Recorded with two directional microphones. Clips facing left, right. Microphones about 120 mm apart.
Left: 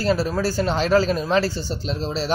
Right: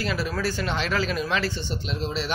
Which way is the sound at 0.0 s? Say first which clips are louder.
Left 6 dB; 35° left (ahead or behind).